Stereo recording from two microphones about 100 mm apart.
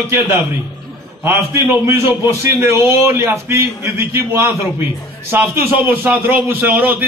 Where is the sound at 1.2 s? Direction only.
25° right (ahead or behind).